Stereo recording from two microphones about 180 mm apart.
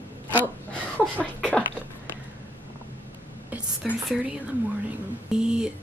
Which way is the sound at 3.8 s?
Centre (ahead or behind).